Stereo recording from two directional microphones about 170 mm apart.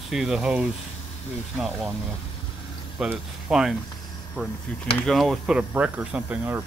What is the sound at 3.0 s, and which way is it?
Speech, 5° right (ahead or behind).